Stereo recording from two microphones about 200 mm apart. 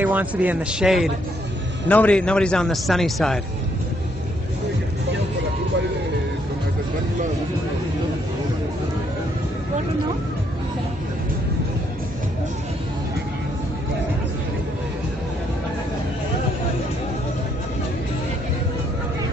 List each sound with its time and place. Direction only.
0.0 s a man's voice: 10° right (ahead or behind)